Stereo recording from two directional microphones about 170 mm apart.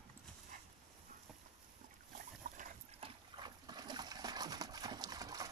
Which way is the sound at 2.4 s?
50° right (ahead or behind).